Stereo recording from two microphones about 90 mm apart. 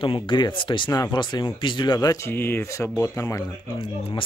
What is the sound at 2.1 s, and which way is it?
Speech, 25° left (ahead or behind).